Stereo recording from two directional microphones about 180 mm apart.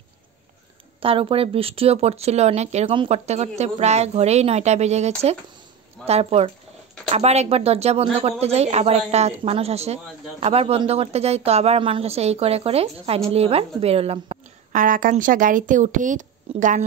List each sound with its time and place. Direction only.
1.0 s speech: 30° right (ahead or behind)
14.7 s speech: 50° right (ahead or behind)